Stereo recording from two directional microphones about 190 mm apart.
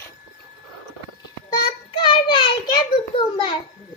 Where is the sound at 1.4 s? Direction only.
25° left (ahead or behind).